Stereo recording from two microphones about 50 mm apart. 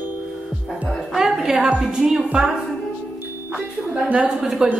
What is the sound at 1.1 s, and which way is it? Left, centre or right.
A woman's voice, centre.